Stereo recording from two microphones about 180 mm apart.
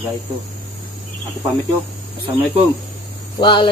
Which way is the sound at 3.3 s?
25° left (ahead or behind).